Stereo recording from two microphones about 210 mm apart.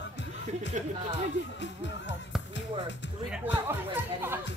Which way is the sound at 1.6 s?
55° left (ahead or behind).